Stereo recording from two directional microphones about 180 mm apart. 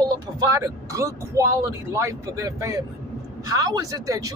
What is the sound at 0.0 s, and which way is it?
Speech, 15° right (ahead or behind).